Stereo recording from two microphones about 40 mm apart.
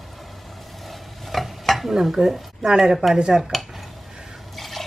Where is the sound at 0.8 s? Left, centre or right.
Centre.